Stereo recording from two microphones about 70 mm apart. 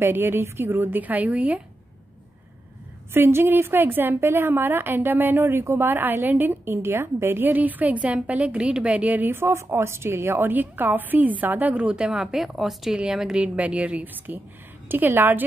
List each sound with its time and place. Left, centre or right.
0.0 s a woman's voice: right
3.1 s a woman's voice: right